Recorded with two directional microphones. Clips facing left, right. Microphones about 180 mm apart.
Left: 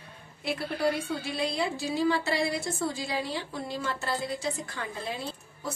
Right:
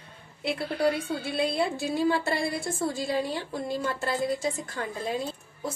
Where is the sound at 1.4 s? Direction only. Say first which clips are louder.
Right 4 dB; 55° right (ahead or behind).